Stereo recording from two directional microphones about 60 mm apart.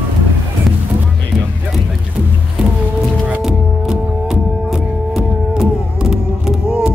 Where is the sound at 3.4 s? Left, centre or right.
Centre.